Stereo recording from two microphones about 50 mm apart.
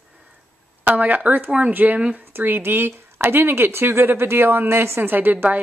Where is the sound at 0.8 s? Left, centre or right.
Right.